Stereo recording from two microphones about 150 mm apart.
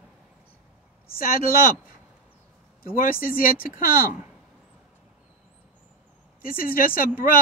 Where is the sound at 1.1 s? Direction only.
70° left (ahead or behind).